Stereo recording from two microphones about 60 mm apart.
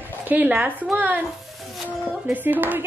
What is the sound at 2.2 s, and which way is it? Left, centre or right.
Speech, right.